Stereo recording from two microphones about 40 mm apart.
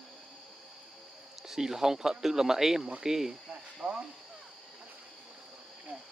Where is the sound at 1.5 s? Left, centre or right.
Centre.